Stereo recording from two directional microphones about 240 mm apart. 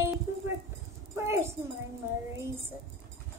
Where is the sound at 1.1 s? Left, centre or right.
Centre.